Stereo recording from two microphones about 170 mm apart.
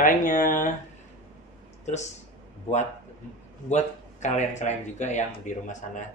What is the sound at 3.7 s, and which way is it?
Speech, 45° left (ahead or behind).